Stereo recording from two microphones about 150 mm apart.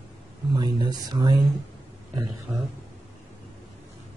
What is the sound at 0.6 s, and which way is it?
Speech, 30° right (ahead or behind).